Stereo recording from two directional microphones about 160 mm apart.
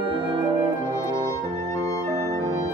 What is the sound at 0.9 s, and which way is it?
Music, 20° left (ahead or behind).